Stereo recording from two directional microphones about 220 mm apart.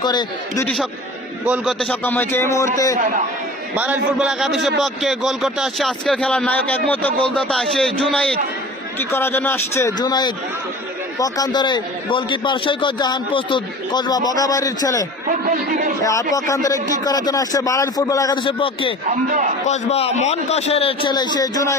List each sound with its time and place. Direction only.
0.0 s a man's voice: 20° left (ahead or behind)
1.4 s a man's voice: 5° right (ahead or behind); by 3.0 s 15° left (ahead or behind)
3.7 s a man's voice: 5° right (ahead or behind); by 18.9 s 25° left (ahead or behind)
19.0 s speech: 35° right (ahead or behind)
19.7 s a man's voice: 30° left (ahead or behind)